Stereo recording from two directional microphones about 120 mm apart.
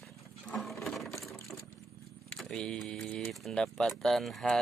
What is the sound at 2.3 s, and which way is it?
Speech, 5° left (ahead or behind).